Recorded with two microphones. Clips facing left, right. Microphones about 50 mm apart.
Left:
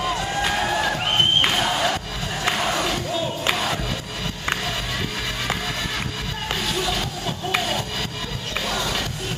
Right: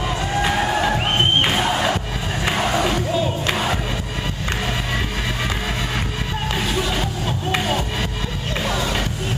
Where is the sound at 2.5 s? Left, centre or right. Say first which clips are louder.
Right 3 dB; centre.